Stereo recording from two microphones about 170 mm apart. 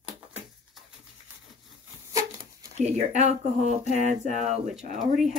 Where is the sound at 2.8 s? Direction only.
40° right (ahead or behind).